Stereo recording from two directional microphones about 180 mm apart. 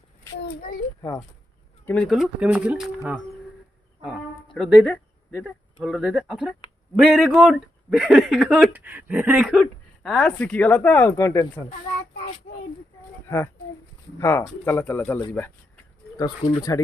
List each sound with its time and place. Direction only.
0.6 s a child's voice: 50° left (ahead or behind)
1.9 s speech: 5° left (ahead or behind)
10.0 s speech: 5° left (ahead or behind)
14.1 s speech: 15° left (ahead or behind)
16.2 s speech: 25° left (ahead or behind)